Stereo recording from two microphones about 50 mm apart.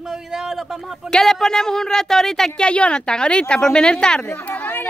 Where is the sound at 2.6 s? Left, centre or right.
Left.